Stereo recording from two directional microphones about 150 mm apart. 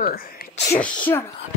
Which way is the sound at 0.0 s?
75° left (ahead or behind).